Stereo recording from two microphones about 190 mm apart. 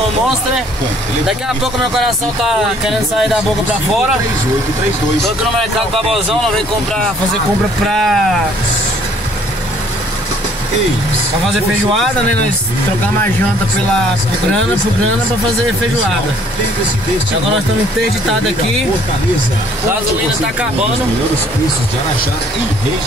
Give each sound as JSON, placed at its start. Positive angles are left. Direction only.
{"t": 1.2, "sound": "speech", "side_deg": 0}
{"t": 7.9, "sound": "speech", "side_deg": 0}
{"t": 11.5, "sound": "speech", "side_deg": 0}